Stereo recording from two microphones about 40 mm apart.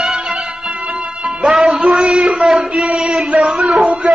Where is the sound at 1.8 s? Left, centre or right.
Right.